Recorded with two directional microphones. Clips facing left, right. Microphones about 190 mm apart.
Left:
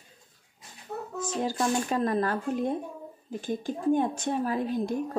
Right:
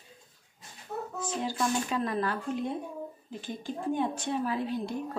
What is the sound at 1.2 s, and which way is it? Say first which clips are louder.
A woman's voice: left 3 dB; 45° left (ahead or behind).